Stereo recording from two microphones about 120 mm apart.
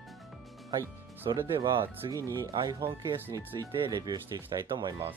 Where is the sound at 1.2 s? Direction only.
35° right (ahead or behind).